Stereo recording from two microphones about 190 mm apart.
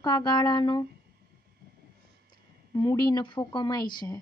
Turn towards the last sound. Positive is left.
turn(degrees=20)  # may be behind; listen again after turning